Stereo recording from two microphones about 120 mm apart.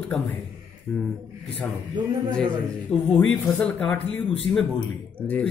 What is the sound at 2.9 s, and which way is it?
Speech, 5° left (ahead or behind).